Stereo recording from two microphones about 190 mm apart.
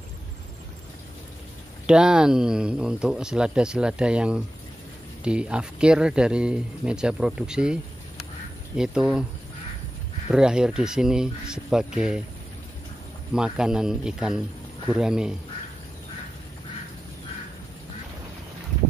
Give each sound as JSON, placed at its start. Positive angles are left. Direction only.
{"t": 1.9, "sound": "speech", "side_deg": -5}
{"t": 10.3, "sound": "speech", "side_deg": -5}
{"t": 13.3, "sound": "speech", "side_deg": -5}